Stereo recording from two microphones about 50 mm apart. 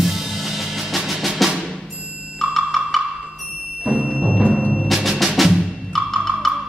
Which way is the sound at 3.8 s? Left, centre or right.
Right.